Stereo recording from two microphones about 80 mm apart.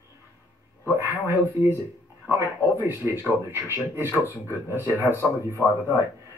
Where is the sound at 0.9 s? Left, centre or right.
Right.